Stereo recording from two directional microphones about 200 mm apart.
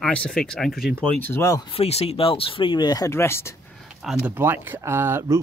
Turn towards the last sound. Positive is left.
turn(degrees=-10)  # may be behind; listen again after turning